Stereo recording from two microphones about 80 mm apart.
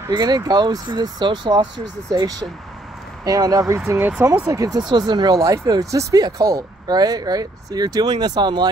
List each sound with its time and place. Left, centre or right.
0.1 s speech: right
2.1 s speech: right
4.5 s speech: right
4.7 s speech: right